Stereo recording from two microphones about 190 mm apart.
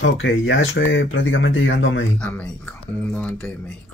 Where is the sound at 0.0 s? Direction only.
90° left.